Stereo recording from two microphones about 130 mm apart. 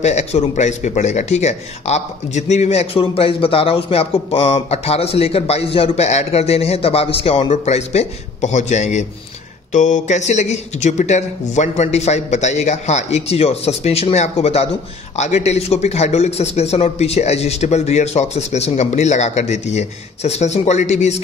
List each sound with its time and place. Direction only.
0.0 s speech: 60° left (ahead or behind)